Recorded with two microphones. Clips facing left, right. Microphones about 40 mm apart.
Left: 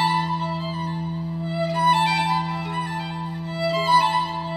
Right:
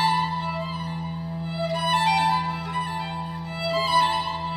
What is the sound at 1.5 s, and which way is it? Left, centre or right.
Music, left.